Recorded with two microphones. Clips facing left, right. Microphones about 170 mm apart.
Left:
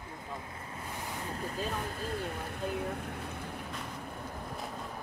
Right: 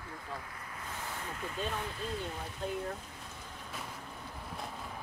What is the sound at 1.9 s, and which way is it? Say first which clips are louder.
Speech: left 2 dB; 50° left (ahead or behind).